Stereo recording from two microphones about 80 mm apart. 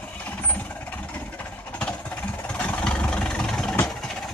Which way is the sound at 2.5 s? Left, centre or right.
Centre.